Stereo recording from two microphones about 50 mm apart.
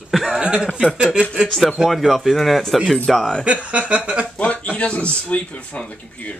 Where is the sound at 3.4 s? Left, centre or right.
Right.